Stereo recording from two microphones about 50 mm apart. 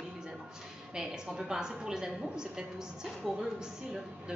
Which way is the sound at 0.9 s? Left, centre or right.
Centre.